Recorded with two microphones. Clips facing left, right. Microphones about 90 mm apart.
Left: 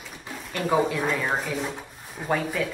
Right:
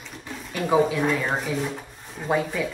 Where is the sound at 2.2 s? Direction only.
10° right (ahead or behind).